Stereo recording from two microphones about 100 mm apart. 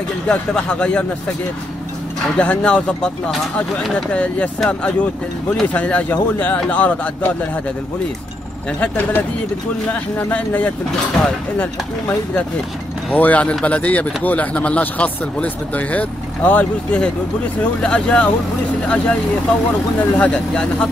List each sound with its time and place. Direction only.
0.3 s speech: 10° left (ahead or behind)
2.3 s speech: 10° left (ahead or behind)
8.8 s speech: 20° left (ahead or behind)
20.0 s speech: 10° left (ahead or behind)